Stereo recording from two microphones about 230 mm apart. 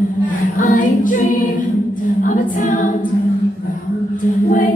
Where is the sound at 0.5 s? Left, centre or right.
Left.